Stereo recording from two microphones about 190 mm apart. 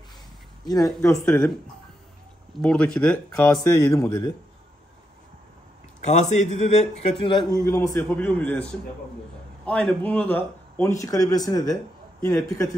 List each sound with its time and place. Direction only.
0.7 s a man's voice: 20° left (ahead or behind)
1.2 s speech: 5° left (ahead or behind)
2.6 s speech: 5° left (ahead or behind)
3.6 s speech: 15° left (ahead or behind)
6.0 s a man's voice: 40° left (ahead or behind); by 8.6 s 10° left (ahead or behind)
9.7 s speech: 5° left (ahead or behind)